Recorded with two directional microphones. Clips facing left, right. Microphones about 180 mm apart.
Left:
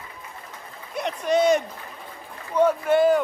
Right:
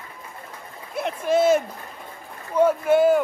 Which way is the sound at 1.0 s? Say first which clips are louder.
Right 1 dB; 5° right (ahead or behind).